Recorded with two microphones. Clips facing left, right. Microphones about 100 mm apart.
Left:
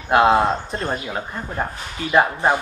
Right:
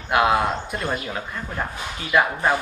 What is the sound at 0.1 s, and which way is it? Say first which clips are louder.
Speech: left 4 dB; 30° left (ahead or behind).